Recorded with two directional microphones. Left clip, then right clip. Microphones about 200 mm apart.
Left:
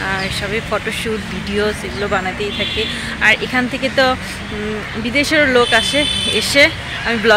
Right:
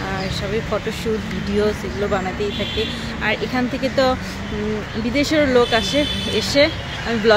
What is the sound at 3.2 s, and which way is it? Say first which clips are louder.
Speech: left 7 dB; centre (ahead or behind).